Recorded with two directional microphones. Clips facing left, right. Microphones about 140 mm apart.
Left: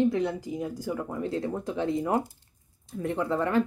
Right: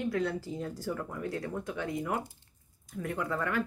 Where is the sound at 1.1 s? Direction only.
25° left (ahead or behind).